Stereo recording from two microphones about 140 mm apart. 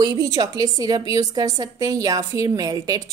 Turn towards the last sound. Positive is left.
turn(degrees=-25)  # may be behind; listen again after turning